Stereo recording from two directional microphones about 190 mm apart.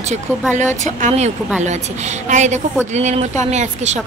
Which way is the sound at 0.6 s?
40° right (ahead or behind).